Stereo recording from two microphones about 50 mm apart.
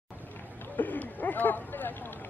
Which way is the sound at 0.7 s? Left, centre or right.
Left.